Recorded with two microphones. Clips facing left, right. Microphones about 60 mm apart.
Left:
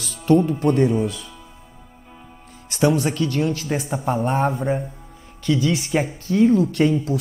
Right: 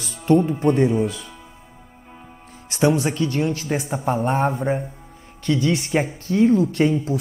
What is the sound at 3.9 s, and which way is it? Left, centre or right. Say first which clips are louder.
Speech: even; centre.